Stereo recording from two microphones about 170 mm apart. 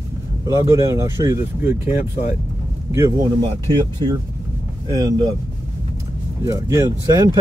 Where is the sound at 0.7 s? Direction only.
20° right (ahead or behind).